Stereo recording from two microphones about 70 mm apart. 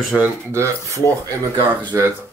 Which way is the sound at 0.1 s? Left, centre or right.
Centre.